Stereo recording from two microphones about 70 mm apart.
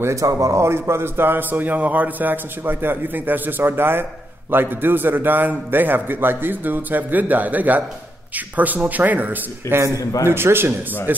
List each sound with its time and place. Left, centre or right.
0.0 s a man's voice: right